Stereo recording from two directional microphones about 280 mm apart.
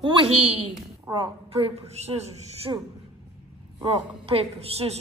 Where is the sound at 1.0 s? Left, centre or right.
Centre.